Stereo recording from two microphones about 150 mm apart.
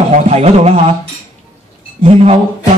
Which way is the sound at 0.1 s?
45° right (ahead or behind).